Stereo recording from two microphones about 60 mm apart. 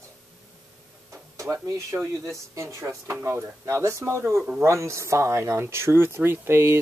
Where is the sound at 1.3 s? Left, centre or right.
Right.